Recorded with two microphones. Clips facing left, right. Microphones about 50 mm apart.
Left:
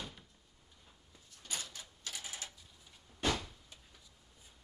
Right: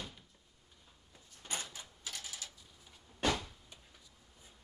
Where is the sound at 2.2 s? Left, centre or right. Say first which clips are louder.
Left 1 dB; left.